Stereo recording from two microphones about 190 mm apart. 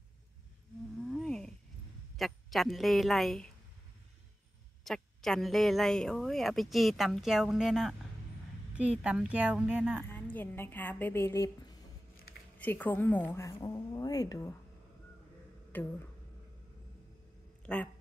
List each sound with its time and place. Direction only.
1.0 s a sound: centre (ahead or behind)
2.1 s speech: centre (ahead or behind)
4.8 s speech: centre (ahead or behind)
9.0 s speech: 5° right (ahead or behind)
10.0 s a woman's voice: 10° left (ahead or behind)
12.5 s a woman's voice: 10° left (ahead or behind)
15.7 s speech: 10° left (ahead or behind)
17.7 s speech: 5° left (ahead or behind)